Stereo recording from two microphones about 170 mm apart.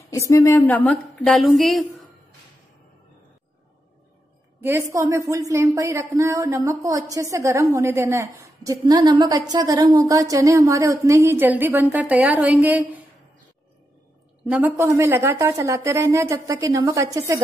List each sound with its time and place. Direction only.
0.1 s a woman's voice: 15° left (ahead or behind); by 2.0 s centre (ahead or behind)
4.6 s a woman's voice: 15° right (ahead or behind)
14.4 s a woman's voice: 10° right (ahead or behind)